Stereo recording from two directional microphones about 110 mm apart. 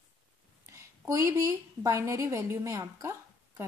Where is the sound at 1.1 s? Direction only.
30° right (ahead or behind).